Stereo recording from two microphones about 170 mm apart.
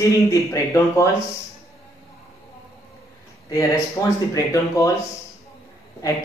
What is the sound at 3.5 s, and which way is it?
Speech, 20° left (ahead or behind).